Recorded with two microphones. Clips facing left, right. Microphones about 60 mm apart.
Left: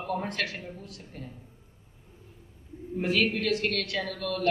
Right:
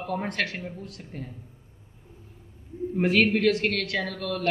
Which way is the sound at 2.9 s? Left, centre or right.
Right.